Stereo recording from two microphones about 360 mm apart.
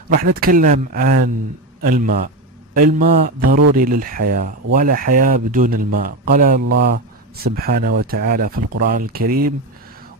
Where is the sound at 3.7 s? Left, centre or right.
Right.